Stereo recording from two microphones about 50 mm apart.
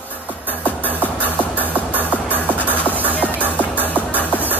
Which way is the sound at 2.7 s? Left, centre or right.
Left.